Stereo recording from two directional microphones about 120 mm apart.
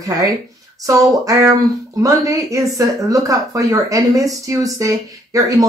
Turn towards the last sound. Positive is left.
turn(degrees=-30)  # may be behind; listen again after turning